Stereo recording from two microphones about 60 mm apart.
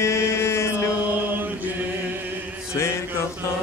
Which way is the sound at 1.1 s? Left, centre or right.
Right.